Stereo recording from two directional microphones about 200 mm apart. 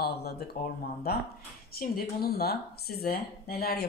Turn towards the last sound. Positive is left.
turn(degrees=50)  # may be behind; listen again after turning